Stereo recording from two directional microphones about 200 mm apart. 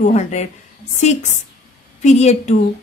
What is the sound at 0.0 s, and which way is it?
A woman's voice, 35° left (ahead or behind).